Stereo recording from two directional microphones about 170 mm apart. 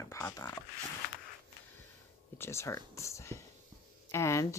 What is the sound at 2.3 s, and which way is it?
Speech, 15° left (ahead or behind).